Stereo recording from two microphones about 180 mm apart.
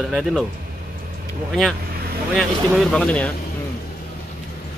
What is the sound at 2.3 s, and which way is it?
Speech, centre (ahead or behind).